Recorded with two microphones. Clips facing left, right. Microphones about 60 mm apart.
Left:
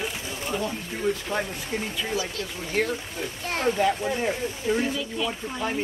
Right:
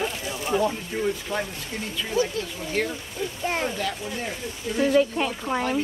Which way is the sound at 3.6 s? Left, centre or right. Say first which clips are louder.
Left 6 dB; left.